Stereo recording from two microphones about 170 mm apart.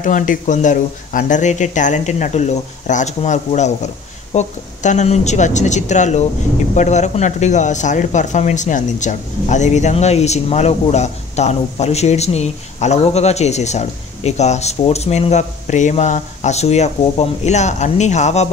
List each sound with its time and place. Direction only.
0.0 s speech: 50° left (ahead or behind)